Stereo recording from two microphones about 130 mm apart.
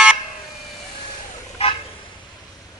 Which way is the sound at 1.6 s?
50° left (ahead or behind).